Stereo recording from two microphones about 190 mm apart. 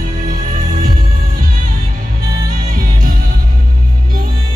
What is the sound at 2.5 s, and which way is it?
Music, 50° right (ahead or behind).